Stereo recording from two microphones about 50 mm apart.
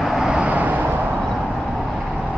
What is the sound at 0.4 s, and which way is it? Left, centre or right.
Vehicle, right.